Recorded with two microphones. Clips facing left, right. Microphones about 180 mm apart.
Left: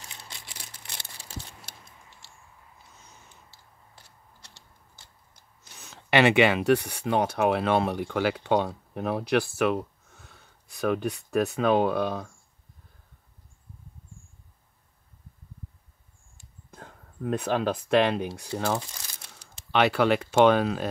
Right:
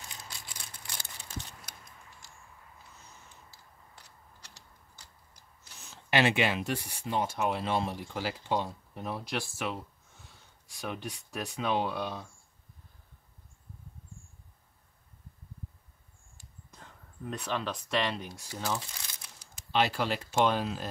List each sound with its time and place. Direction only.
1.7 s a sound: 30° left (ahead or behind)
5.8 s speech: 65° left (ahead or behind); by 12.3 s 50° left (ahead or behind)
16.7 s speech: 55° left (ahead or behind)
19.7 s speech: 70° left (ahead or behind)